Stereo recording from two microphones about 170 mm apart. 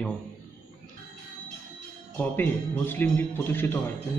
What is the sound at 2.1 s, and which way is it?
A man's voice, 10° left (ahead or behind).